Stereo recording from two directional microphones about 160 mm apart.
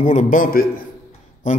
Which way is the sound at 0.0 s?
50° left (ahead or behind).